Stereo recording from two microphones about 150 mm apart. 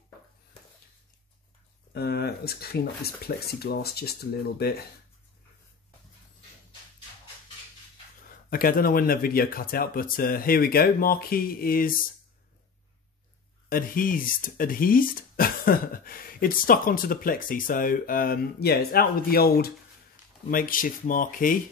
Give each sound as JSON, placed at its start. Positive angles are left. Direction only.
{"t": 2.0, "sound": "speech", "side_deg": 90}
{"t": 8.5, "sound": "speech", "side_deg": 70}
{"t": 13.7, "sound": "speech", "side_deg": 70}
{"t": 20.5, "sound": "speech", "side_deg": 70}